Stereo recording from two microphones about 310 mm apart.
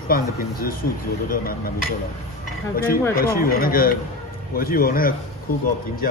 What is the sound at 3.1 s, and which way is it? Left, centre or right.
Speech, left.